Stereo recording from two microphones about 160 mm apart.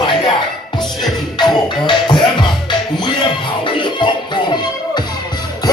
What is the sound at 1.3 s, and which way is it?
Music, 30° left (ahead or behind).